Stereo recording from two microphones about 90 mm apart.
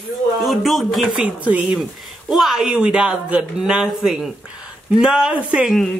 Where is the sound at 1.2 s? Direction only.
15° right (ahead or behind).